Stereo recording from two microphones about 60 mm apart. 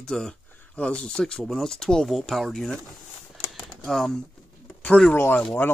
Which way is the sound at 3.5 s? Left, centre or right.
Centre.